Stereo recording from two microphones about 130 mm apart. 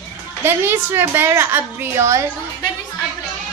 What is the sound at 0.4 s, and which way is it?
A woman's voice, 15° right (ahead or behind).